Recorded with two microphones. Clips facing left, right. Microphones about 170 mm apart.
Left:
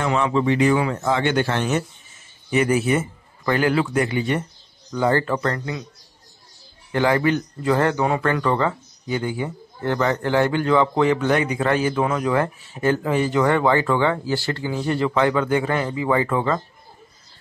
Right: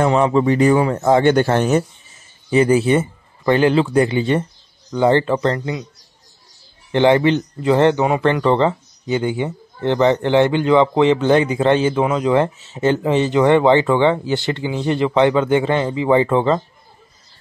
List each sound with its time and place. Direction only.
0.0 s speech: 40° right (ahead or behind)
2.5 s speech: 30° right (ahead or behind)
6.9 s speech: 25° right (ahead or behind)